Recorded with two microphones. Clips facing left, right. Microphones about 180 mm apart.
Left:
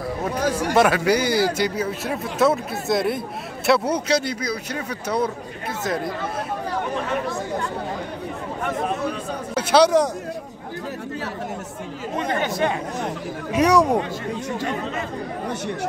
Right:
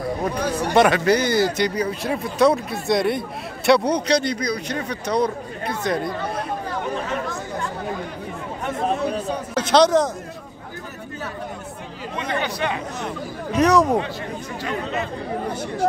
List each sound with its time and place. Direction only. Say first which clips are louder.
0.5 s speech: right 1 dB; 5° left (ahead or behind)
9.6 s speech: even; 10° left (ahead or behind)
12.2 s speech: left 2 dB; 45° left (ahead or behind)
13.5 s speech: even; 10° left (ahead or behind)